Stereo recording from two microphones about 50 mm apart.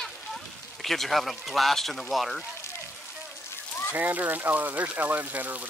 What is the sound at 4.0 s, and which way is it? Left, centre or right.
Speech, right.